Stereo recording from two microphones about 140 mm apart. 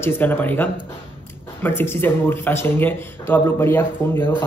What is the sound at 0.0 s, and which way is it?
A man's voice, 15° left (ahead or behind).